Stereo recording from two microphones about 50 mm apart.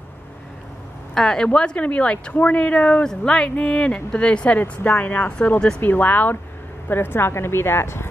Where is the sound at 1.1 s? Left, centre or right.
Centre.